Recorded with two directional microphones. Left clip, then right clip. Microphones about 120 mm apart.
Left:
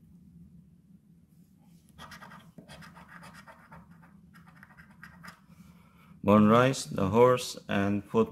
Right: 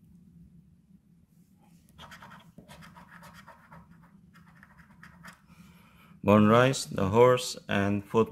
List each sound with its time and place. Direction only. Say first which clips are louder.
6.0 s speech: right 1 dB; 25° right (ahead or behind)